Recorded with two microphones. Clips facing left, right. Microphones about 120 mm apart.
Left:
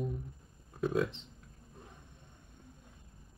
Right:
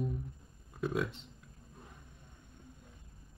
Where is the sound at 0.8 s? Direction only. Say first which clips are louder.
Left 3 dB; centre (ahead or behind).